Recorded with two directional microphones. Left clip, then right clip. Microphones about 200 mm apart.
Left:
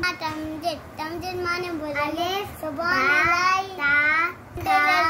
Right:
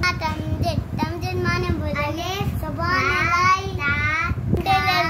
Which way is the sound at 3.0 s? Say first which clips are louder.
Even; 10° left (ahead or behind).